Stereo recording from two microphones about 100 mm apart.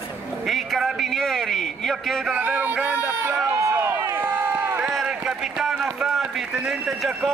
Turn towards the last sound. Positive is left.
turn(degrees=-5)  # may be behind; listen again after turning